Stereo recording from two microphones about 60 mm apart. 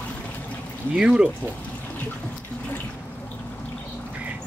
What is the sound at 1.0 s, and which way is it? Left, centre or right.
Speech, centre.